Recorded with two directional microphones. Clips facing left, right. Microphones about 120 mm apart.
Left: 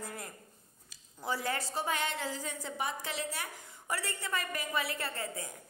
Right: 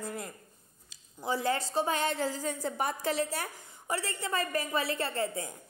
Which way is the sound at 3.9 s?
30° right (ahead or behind).